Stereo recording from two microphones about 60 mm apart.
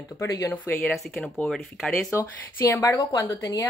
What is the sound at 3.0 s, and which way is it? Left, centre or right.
Speech, left.